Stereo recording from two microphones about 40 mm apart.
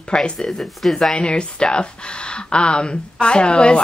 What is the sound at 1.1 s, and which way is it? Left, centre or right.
Speech, left.